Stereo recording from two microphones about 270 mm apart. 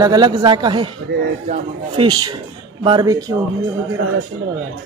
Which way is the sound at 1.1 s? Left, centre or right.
Right.